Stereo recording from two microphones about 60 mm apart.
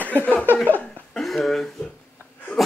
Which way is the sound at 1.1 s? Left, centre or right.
Centre.